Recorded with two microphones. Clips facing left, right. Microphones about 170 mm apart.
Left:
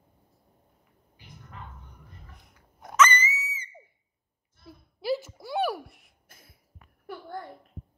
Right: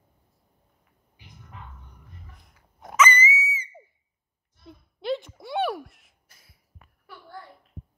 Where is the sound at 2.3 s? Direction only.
Centre (ahead or behind).